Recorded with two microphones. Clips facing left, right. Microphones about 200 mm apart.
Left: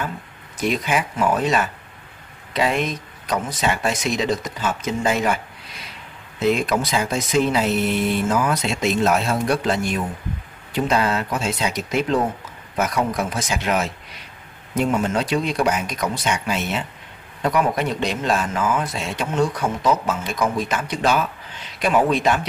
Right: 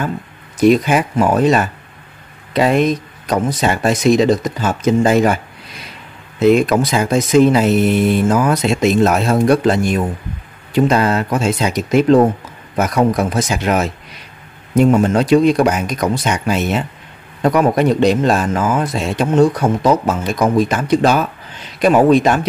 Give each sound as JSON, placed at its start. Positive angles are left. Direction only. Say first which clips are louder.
{"t": 0.7, "sound": "speech", "louder": "right 10 dB", "side_deg": -40}
{"t": 6.4, "sound": "speech", "louder": "right 8 dB", "side_deg": -50}
{"t": 14.9, "sound": "speech", "louder": "right 9 dB", "side_deg": -50}